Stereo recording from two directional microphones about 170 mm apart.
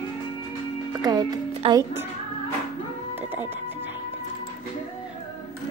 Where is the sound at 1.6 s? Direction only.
35° right (ahead or behind).